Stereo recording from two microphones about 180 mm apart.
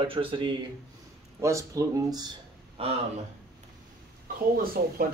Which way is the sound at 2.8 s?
35° right (ahead or behind).